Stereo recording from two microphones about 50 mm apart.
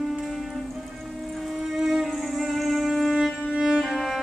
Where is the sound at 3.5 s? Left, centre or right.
Centre.